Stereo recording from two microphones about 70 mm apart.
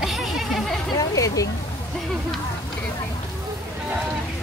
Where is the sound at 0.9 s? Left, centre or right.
Left.